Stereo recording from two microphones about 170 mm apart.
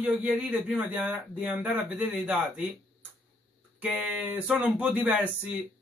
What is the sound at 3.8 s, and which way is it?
A man's voice, 5° right (ahead or behind).